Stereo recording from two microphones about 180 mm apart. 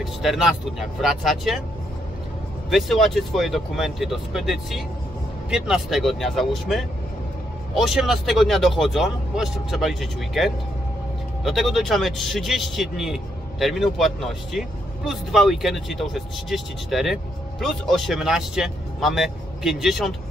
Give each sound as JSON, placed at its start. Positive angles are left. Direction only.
{"t": 0.0, "sound": "a man's voice", "side_deg": 0}
{"t": 2.7, "sound": "a man's voice", "side_deg": 0}